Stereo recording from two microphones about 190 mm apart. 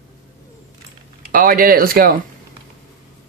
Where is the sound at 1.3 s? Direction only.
50° right (ahead or behind).